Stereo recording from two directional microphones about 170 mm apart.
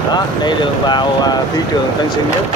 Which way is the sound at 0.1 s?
25° left (ahead or behind).